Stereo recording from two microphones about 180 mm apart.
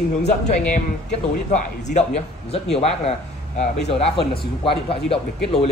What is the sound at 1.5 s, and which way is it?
A man's voice, 40° left (ahead or behind).